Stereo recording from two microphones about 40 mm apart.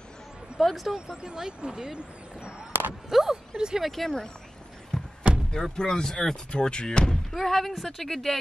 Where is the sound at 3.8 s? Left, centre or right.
Centre.